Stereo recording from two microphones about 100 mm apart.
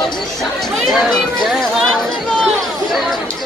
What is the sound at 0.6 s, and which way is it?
Speech, centre (ahead or behind).